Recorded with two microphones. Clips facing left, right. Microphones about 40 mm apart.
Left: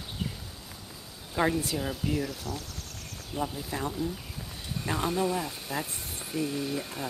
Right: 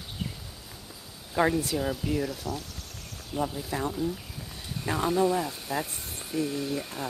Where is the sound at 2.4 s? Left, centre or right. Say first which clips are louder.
Right 3 dB; right.